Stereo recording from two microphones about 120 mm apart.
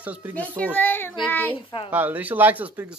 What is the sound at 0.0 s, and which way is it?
Speech, 10° right (ahead or behind).